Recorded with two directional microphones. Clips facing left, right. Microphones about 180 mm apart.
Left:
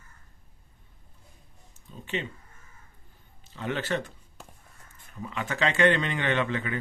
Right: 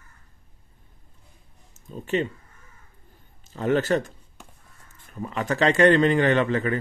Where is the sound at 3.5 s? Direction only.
45° right (ahead or behind).